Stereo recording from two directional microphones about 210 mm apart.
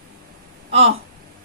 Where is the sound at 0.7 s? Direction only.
30° right (ahead or behind).